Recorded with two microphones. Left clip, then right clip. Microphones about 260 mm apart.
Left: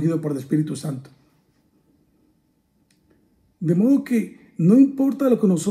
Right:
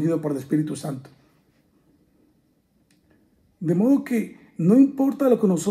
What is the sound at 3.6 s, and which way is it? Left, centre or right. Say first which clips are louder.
Speech: left 1 dB; right.